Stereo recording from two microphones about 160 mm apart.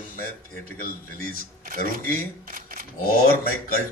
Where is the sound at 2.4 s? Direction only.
60° right (ahead or behind).